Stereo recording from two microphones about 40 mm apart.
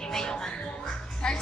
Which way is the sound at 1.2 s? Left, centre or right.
Left.